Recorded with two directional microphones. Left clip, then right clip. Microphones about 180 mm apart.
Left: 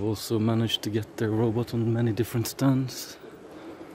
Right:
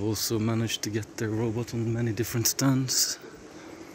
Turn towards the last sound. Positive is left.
turn(degrees=0)  # may be behind; listen again after turning